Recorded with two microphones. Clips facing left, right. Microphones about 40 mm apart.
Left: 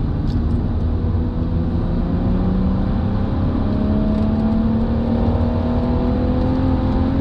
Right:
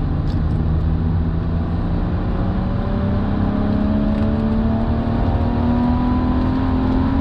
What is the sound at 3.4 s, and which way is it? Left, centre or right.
Vehicle, centre.